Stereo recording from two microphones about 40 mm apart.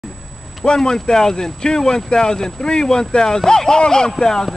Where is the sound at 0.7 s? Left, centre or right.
Centre.